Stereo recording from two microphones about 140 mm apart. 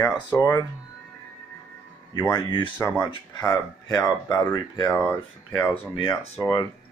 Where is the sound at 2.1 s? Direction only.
30° left (ahead or behind).